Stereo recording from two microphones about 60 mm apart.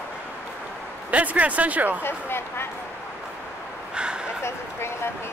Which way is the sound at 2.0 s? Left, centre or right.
Left.